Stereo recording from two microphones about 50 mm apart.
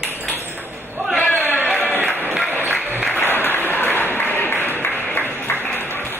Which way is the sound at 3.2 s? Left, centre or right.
Left.